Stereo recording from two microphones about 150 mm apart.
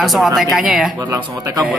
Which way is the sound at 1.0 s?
25° right (ahead or behind).